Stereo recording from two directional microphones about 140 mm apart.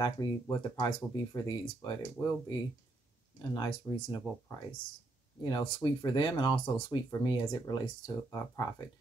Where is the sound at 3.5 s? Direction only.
30° left (ahead or behind).